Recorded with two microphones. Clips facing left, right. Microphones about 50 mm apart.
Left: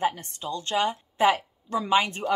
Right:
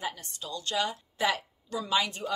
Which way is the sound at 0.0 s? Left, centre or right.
Left.